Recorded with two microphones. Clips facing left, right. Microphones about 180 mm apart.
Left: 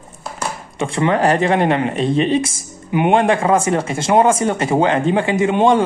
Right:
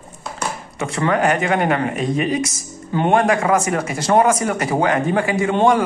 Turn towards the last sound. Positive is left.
turn(degrees=25)  # may be behind; listen again after turning